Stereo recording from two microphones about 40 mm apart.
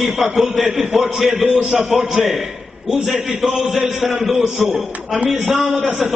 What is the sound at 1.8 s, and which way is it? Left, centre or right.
A man's voice, centre.